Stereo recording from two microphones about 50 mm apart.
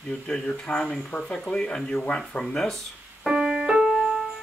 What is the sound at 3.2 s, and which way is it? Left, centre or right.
Keyboard, centre.